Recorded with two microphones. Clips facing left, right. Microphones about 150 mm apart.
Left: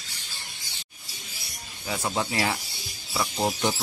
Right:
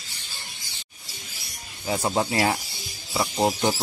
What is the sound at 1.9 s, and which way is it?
Speech, 30° right (ahead or behind).